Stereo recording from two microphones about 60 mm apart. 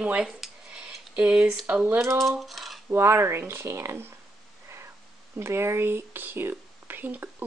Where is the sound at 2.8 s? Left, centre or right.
Right.